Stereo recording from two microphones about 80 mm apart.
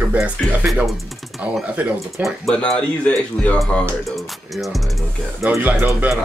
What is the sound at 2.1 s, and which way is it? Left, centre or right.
Music, centre.